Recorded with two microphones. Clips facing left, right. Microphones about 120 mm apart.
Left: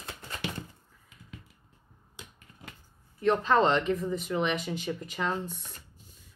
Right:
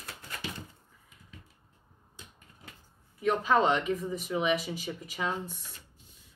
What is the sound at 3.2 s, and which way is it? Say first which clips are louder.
Speech: left 2 dB; 10° right (ahead or behind).